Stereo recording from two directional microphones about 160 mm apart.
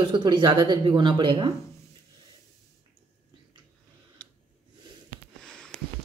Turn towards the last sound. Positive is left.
turn(degrees=-45)  # may be behind; listen again after turning